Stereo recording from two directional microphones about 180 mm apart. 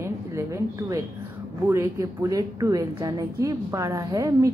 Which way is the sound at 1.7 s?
15° right (ahead or behind).